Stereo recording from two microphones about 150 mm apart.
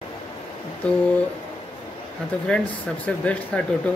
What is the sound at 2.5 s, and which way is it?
Speech, 5° left (ahead or behind).